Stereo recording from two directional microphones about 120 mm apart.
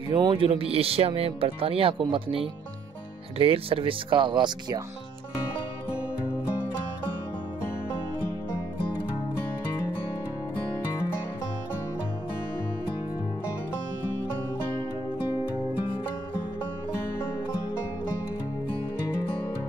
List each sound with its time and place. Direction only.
0.1 s speech: 45° right (ahead or behind)